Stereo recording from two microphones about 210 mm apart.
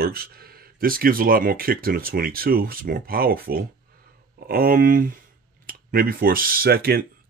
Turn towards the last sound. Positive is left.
turn(degrees=-45)  # may be behind; listen again after turning